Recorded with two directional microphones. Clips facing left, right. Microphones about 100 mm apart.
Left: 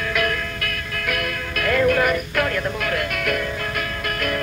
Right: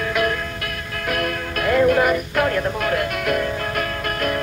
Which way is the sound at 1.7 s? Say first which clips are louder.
Right 2 dB; 20° right (ahead or behind).